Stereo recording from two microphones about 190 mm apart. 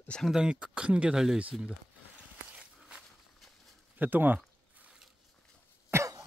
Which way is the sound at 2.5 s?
5° right (ahead or behind).